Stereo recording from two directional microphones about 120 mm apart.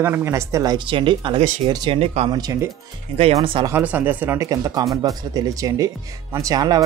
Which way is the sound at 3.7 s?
15° right (ahead or behind).